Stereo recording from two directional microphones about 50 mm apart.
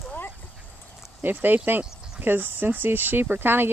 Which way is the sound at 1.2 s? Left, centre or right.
Right.